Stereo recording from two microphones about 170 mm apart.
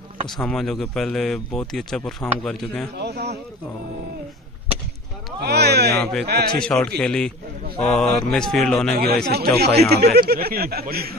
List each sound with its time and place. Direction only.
0.4 s speech: 5° left (ahead or behind)
3.0 s speech: 75° right (ahead or behind)
5.4 s speech: 70° right (ahead or behind)
6.6 s speech: 5° left (ahead or behind)
8.9 s speech: 70° right (ahead or behind)